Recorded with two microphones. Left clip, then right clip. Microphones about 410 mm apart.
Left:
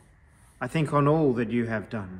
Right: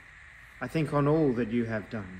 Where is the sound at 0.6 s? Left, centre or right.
Centre.